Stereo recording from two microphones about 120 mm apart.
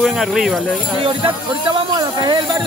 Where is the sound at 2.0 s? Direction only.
35° right (ahead or behind).